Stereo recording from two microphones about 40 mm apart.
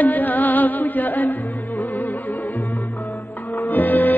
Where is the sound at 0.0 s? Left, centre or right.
Left.